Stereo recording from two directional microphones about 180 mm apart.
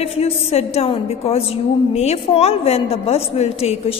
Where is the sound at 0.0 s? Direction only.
35° left (ahead or behind).